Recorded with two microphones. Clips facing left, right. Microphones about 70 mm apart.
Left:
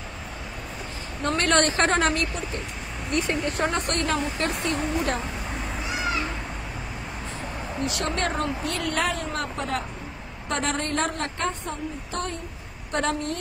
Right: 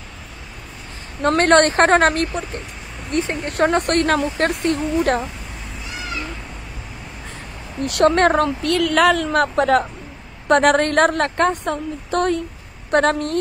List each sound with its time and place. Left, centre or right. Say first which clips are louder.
1.2 s a woman's voice: right 8 dB; right
3.4 s speech: right 8 dB; right
7.8 s a woman's voice: right 13 dB; right
12.9 s speech: right 9 dB; right